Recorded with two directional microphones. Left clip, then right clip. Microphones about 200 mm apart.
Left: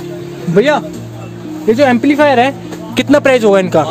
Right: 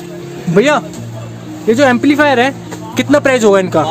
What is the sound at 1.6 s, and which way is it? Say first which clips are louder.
Speech: even; centre (ahead or behind).